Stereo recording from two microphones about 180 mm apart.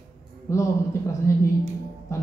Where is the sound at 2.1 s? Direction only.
15° left (ahead or behind).